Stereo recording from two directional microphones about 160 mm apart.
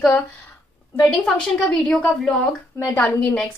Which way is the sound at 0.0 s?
15° left (ahead or behind).